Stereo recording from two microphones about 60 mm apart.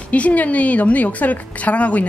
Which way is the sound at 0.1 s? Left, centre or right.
Left.